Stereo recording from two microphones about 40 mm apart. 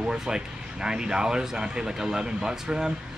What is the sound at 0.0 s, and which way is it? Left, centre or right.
Speech, centre.